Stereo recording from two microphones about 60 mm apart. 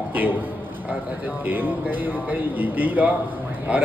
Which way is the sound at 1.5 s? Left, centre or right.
Right.